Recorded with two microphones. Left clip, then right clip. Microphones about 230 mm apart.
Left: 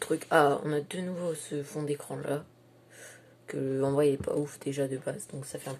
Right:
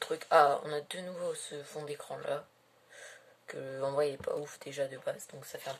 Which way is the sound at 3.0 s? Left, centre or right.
Centre.